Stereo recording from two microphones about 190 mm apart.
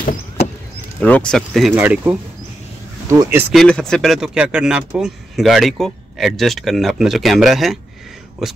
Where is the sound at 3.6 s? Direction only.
5° left (ahead or behind).